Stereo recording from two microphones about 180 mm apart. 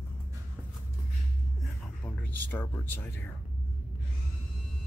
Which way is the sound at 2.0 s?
10° left (ahead or behind).